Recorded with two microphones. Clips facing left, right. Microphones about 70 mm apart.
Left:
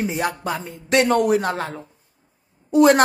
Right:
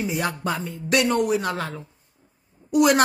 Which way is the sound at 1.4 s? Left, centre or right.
Left.